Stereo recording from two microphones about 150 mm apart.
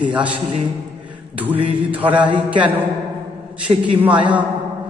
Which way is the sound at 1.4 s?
10° right (ahead or behind).